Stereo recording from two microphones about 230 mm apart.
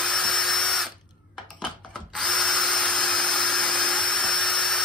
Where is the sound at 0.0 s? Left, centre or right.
Centre.